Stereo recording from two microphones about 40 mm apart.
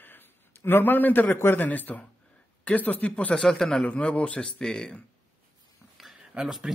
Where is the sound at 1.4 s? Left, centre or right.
Left.